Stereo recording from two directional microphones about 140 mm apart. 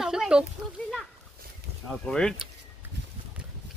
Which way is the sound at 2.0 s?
5° left (ahead or behind).